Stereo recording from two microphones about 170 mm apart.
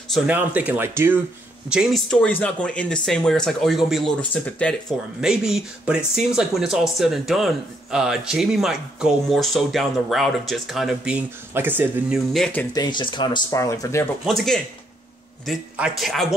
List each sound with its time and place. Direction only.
0.1 s speech: 10° right (ahead or behind)
2.2 s speech: 10° left (ahead or behind)
5.2 s speech: 5° right (ahead or behind)
12.3 s speech: centre (ahead or behind)
12.7 s speech: 25° left (ahead or behind)
14.2 s speech: centre (ahead or behind)